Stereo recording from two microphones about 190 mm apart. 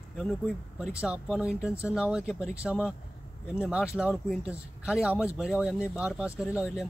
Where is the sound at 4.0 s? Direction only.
5° right (ahead or behind).